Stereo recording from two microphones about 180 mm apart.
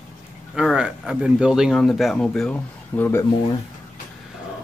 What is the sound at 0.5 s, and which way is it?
Speech, 5° right (ahead or behind).